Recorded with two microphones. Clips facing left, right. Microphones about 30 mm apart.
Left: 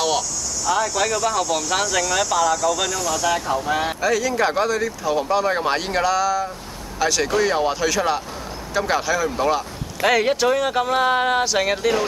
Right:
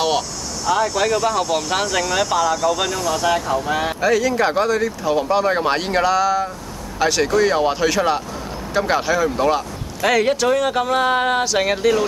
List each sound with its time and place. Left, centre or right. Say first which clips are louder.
0.9 s speech: right 2 dB; centre
2.5 s speech: right 2 dB; right
3.6 s speech: right 2 dB; centre
7.2 s speech: right 4 dB; centre
7.5 s speech: right 3 dB; centre
10.0 s speech: right 1 dB; centre